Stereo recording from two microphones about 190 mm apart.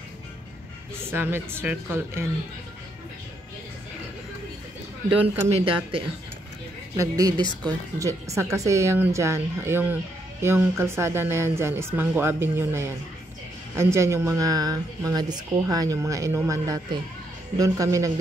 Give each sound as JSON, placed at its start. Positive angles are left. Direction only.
{"t": 0.9, "sound": "speech", "side_deg": -10}
{"t": 5.5, "sound": "speech", "side_deg": -25}